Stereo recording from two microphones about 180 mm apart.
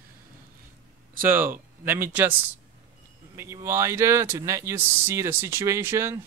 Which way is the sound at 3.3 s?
15° right (ahead or behind).